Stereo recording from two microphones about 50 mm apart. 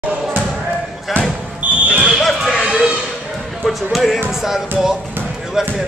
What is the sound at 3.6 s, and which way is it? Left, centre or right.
A man's voice, centre.